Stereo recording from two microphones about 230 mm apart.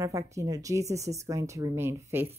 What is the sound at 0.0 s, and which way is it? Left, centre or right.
Speech, centre.